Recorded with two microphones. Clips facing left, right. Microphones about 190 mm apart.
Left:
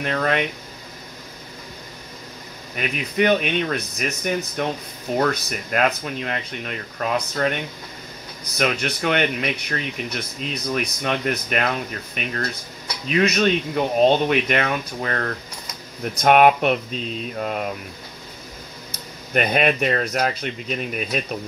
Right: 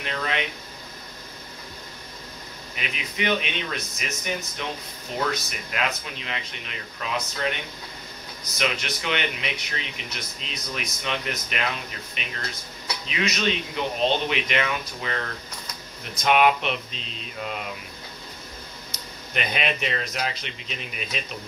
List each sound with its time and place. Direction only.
0.0 s speech: 50° left (ahead or behind)
2.7 s speech: 50° left (ahead or behind)
8.5 s speech: 50° left (ahead or behind)
19.3 s speech: 50° left (ahead or behind)